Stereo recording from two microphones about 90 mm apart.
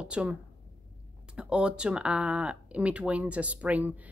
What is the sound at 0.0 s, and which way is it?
A woman's voice, 10° right (ahead or behind).